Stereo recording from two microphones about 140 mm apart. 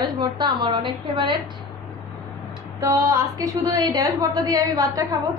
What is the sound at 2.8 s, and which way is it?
A woman's voice, 25° right (ahead or behind).